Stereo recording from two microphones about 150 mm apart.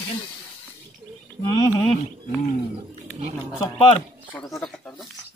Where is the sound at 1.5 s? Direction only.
25° left (ahead or behind).